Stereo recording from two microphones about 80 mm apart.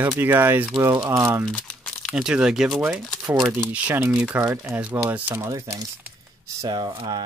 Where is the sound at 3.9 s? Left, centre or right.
Right.